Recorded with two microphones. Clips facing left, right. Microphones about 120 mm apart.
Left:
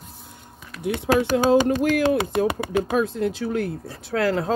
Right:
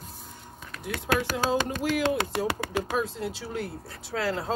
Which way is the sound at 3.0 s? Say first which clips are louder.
Left 8 dB; 55° left (ahead or behind).